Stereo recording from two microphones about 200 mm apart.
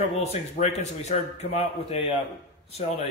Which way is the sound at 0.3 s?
35° left (ahead or behind).